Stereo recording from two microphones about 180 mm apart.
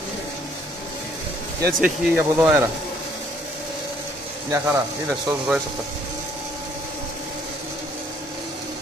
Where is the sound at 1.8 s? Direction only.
5° right (ahead or behind).